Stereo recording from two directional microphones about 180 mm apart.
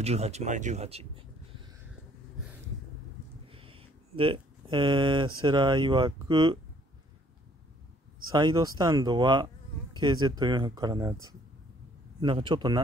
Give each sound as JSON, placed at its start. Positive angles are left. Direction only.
{"t": 0.0, "sound": "speech", "side_deg": -35}
{"t": 3.4, "sound": "speech", "side_deg": -30}
{"t": 8.3, "sound": "speech", "side_deg": -25}
{"t": 12.2, "sound": "speech", "side_deg": -25}